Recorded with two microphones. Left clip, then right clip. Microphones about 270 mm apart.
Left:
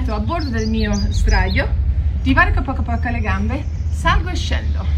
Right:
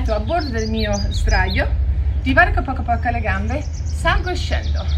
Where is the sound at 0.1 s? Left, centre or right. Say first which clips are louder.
Right 3 dB; centre.